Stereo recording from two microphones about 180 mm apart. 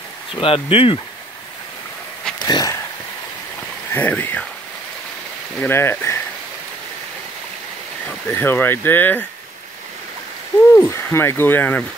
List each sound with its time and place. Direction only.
0.4 s speech: 30° left (ahead or behind)
2.3 s a sound: 20° left (ahead or behind)
3.9 s speech: 10° left (ahead or behind)
5.6 s speech: 15° left (ahead or behind)
8.3 s speech: 10° left (ahead or behind)
10.7 s speech: 15° left (ahead or behind)